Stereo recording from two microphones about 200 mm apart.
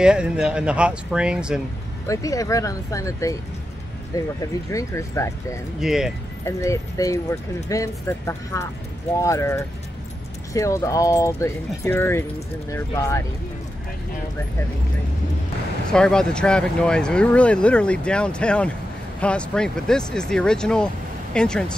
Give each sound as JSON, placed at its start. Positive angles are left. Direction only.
{"t": 0.0, "sound": "speech", "side_deg": -5}
{"t": 2.0, "sound": "speech", "side_deg": 15}
{"t": 4.4, "sound": "speech", "side_deg": 15}
{"t": 5.8, "sound": "speech", "side_deg": 0}
{"t": 6.4, "sound": "speech", "side_deg": 15}
{"t": 15.9, "sound": "speech", "side_deg": 5}